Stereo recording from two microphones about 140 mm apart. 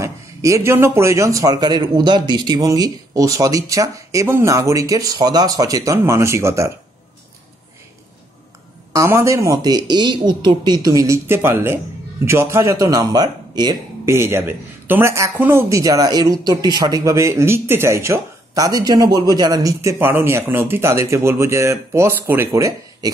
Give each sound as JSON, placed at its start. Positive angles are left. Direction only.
{"t": 0.0, "sound": "speech", "side_deg": -20}
{"t": 8.9, "sound": "speech", "side_deg": -20}